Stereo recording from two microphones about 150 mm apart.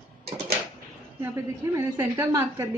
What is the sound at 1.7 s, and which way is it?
Speech, 15° right (ahead or behind).